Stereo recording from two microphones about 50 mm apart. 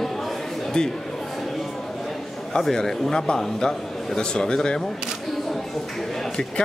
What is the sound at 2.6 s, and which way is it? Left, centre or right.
Speech, centre.